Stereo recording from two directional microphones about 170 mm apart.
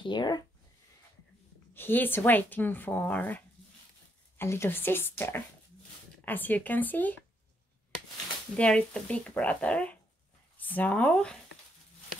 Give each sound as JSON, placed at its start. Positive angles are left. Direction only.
{"t": 0.0, "sound": "speech", "side_deg": 25}
{"t": 1.7, "sound": "speech", "side_deg": 10}
{"t": 8.5, "sound": "speech", "side_deg": 5}